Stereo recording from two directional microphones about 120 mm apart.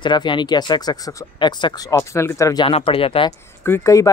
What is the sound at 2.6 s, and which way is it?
Speech, 50° left (ahead or behind).